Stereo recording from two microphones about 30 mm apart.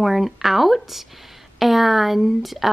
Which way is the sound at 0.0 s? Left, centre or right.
Centre.